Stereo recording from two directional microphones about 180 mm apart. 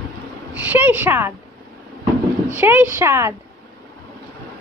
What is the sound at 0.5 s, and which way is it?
Speech, 10° right (ahead or behind).